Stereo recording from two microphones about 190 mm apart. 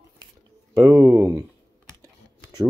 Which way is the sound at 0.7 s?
20° right (ahead or behind).